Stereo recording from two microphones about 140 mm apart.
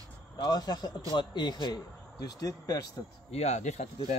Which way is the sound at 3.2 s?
50° left (ahead or behind).